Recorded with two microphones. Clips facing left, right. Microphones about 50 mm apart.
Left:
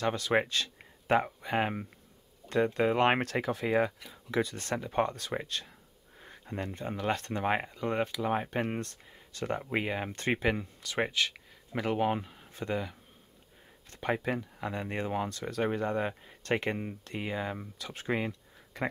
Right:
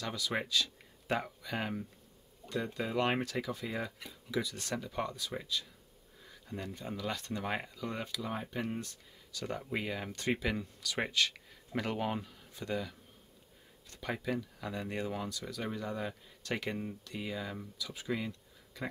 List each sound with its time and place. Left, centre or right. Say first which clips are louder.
0.0 s speech: left 8 dB; left
9.4 s speech: left 5 dB; left